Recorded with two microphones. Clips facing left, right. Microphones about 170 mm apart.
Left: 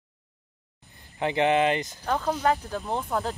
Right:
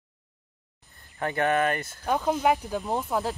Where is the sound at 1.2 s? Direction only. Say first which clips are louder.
Left 2 dB; 20° left (ahead or behind).